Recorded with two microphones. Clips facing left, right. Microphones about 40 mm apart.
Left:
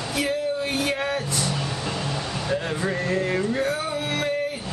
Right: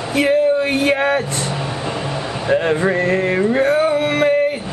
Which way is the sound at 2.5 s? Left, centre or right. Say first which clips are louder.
Right 11 dB; right.